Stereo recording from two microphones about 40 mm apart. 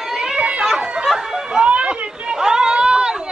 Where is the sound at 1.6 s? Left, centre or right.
Right.